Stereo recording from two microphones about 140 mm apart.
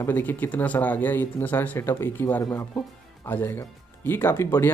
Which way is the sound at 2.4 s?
25° left (ahead or behind).